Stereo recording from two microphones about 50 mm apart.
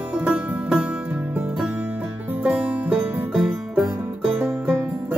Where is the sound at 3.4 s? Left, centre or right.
Centre.